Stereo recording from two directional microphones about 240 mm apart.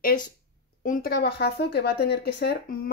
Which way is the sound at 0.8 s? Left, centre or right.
Left.